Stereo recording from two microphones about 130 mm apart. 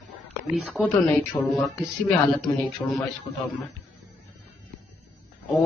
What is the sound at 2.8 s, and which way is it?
Speech, 25° left (ahead or behind).